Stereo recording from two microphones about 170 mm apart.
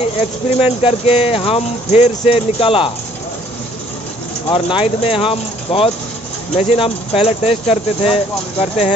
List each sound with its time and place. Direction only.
0.0 s speech: 40° left (ahead or behind)
4.5 s speech: 30° left (ahead or behind)